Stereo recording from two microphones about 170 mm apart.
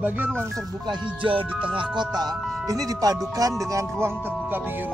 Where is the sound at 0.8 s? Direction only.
30° right (ahead or behind).